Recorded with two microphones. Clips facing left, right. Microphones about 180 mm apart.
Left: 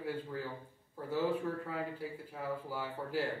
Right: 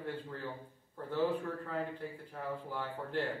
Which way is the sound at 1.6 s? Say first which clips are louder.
Right 1 dB; 5° left (ahead or behind).